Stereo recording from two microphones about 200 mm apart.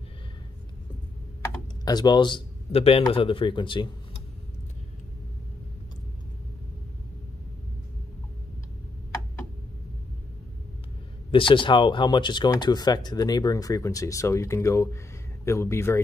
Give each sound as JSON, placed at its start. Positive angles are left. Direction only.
{"t": 1.9, "sound": "speech", "side_deg": 20}
{"t": 11.3, "sound": "speech", "side_deg": 25}